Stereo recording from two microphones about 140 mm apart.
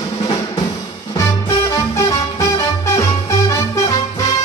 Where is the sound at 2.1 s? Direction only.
25° left (ahead or behind).